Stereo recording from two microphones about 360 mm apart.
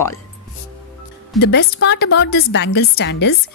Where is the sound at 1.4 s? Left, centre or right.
Left.